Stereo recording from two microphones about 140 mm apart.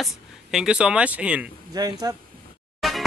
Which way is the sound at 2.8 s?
Centre (ahead or behind).